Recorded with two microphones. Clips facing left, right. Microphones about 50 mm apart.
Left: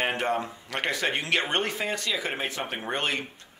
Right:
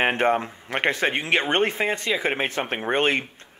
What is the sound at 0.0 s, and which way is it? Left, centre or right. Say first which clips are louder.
Speech: right 6 dB; right.